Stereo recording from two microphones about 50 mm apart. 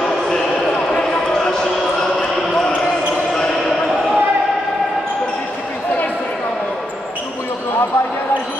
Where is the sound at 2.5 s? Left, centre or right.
Centre.